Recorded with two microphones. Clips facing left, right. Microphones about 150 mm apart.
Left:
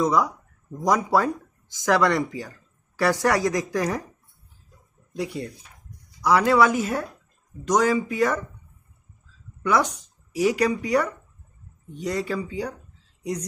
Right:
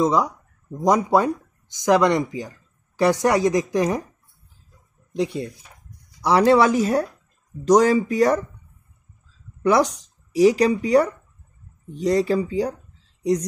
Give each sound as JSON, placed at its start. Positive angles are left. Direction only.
{"t": 0.0, "sound": "speech", "side_deg": -25}
{"t": 5.1, "sound": "speech", "side_deg": -20}
{"t": 9.6, "sound": "a sound", "side_deg": -35}
{"t": 10.3, "sound": "speech", "side_deg": -30}